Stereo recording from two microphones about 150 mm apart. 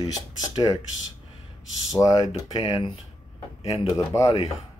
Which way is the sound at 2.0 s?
25° left (ahead or behind).